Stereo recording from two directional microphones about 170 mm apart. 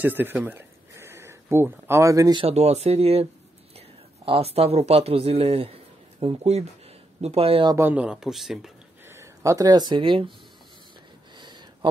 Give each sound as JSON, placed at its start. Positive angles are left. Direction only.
{"t": 0.0, "sound": "speech", "side_deg": -10}
{"t": 2.4, "sound": "speech", "side_deg": -40}
{"t": 4.3, "sound": "speech", "side_deg": -35}
{"t": 7.7, "sound": "speech", "side_deg": -10}
{"t": 9.0, "sound": "speech", "side_deg": -15}
{"t": 11.3, "sound": "a sound", "side_deg": -25}